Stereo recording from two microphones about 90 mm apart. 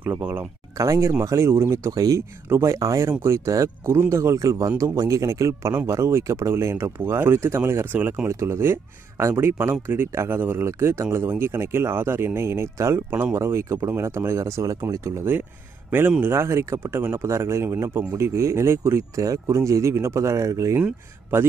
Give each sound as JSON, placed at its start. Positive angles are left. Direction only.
{"t": 0.2, "sound": "speech", "side_deg": -25}
{"t": 0.7, "sound": "speech", "side_deg": -35}
{"t": 8.3, "sound": "speech", "side_deg": -30}